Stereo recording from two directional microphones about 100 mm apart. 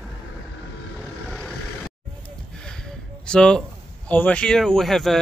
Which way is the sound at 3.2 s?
10° left (ahead or behind).